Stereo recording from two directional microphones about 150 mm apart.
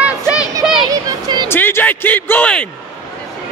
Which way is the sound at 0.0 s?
5° right (ahead or behind).